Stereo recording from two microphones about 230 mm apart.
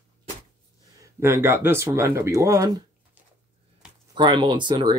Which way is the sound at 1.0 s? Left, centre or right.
Centre.